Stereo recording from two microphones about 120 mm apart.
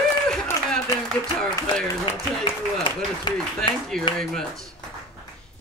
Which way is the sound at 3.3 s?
40° left (ahead or behind).